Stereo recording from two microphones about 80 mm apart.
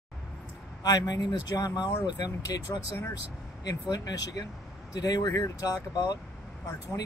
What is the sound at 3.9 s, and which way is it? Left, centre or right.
Speech, left.